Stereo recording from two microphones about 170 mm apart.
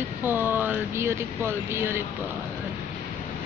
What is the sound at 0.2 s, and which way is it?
Speech, 10° right (ahead or behind).